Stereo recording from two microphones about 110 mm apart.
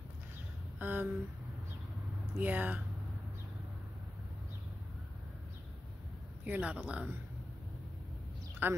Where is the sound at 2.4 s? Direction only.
15° right (ahead or behind).